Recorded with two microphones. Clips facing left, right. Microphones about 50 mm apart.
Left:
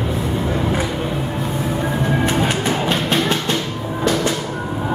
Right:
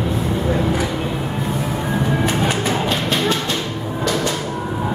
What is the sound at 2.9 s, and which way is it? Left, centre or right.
Music, left.